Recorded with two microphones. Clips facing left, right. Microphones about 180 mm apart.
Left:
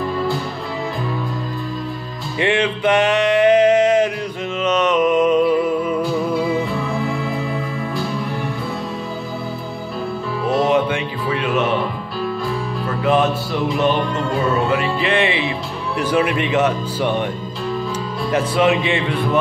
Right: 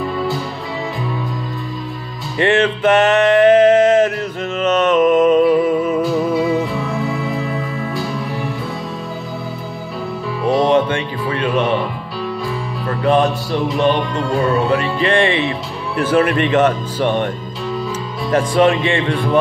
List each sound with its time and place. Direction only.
2.3 s music: 10° left (ahead or behind)
2.8 s a sound: 50° right (ahead or behind)
4.6 s a sound: 10° left (ahead or behind)
5.2 s music: 10° right (ahead or behind)
10.5 s music: 5° left (ahead or behind)
13.0 s music: 5° left (ahead or behind)
16.0 s speech: 10° left (ahead or behind)
18.7 s speech: 5° left (ahead or behind)